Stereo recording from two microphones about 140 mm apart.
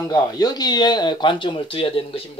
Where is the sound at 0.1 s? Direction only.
30° left (ahead or behind).